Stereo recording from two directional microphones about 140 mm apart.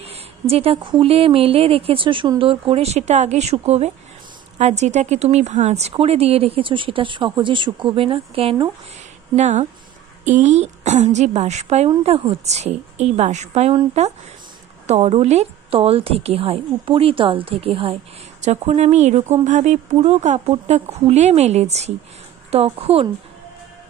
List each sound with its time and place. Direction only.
0.0 s a sound: 45° right (ahead or behind)
0.7 s speech: 35° right (ahead or behind)
9.3 s a woman's voice: 55° right (ahead or behind)
18.4 s speech: 55° right (ahead or behind)